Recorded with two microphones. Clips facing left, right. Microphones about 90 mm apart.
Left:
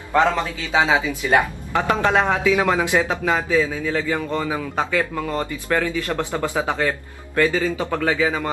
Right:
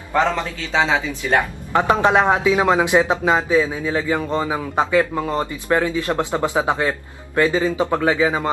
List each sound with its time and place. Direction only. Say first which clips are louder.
0.7 s speech: even; 15° left (ahead or behind)
1.7 s a man's voice: right 4 dB; 20° right (ahead or behind)